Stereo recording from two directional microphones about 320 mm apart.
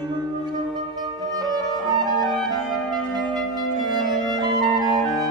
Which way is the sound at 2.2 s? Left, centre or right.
Centre.